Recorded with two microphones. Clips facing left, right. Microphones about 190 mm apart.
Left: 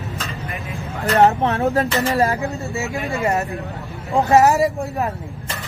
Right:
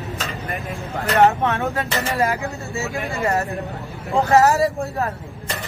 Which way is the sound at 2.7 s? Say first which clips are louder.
Left 2 dB; 20° left (ahead or behind).